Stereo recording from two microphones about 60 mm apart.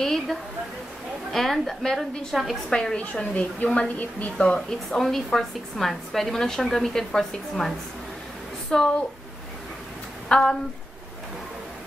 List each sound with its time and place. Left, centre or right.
0.0 s a sound: centre
1.3 s a woman's voice: centre
2.7 s a woman's voice: centre
3.0 s a woman's voice: left
4.6 s a woman's voice: centre
10.2 s speech: centre